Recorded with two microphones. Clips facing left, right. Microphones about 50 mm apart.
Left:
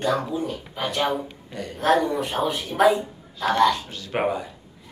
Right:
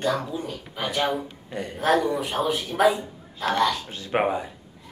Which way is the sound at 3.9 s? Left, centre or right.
Right.